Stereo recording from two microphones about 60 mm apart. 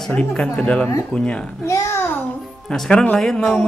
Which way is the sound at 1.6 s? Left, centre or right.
Left.